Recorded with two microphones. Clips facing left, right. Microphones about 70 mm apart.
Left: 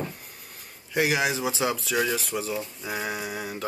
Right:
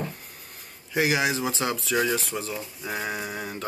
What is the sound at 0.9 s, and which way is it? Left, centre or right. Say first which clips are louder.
Speech: even; centre.